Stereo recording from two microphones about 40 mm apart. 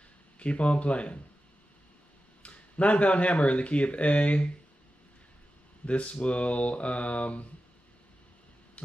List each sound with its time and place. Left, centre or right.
0.4 s speech: left
2.4 s speech: left
5.9 s speech: left
8.8 s heart sounds: left